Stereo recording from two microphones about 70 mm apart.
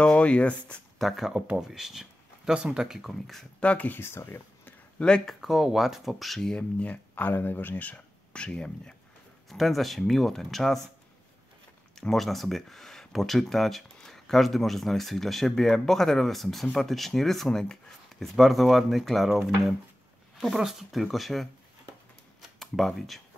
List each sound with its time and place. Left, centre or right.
0.0 s speech: centre
0.9 s speech: centre
3.6 s speech: left
4.0 s speech: left
4.9 s speech: centre
5.4 s speech: centre
6.5 s speech: centre
9.5 s speech: centre
12.0 s speech: centre
22.6 s speech: centre